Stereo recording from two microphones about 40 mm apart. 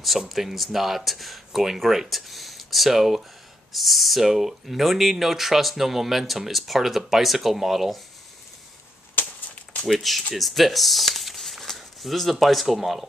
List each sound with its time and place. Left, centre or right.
0.3 s speech: centre
9.2 s a sound: left
9.8 s speech: centre